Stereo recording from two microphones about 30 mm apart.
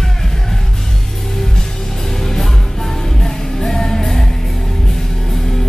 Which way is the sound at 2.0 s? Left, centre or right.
Centre.